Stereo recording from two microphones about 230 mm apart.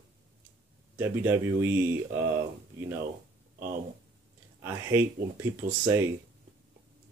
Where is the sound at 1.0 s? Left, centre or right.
Centre.